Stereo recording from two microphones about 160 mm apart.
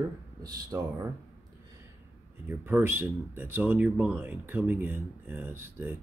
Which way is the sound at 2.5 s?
15° right (ahead or behind).